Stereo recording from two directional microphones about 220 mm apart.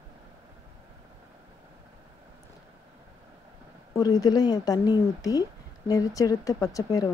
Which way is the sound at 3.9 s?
15° left (ahead or behind).